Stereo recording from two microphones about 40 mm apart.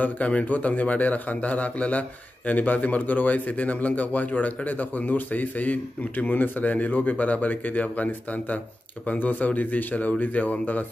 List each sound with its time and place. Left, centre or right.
0.0 s a man's voice: left